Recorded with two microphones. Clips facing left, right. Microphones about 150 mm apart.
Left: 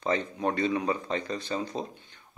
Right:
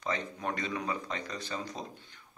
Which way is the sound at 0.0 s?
30° left (ahead or behind).